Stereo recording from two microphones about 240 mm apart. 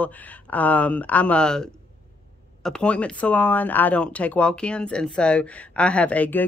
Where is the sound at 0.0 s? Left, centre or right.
Centre.